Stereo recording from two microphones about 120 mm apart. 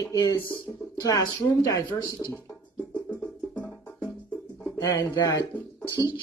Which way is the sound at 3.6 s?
5° left (ahead or behind).